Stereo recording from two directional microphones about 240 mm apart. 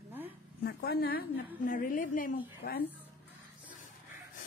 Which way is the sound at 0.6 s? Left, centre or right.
Left.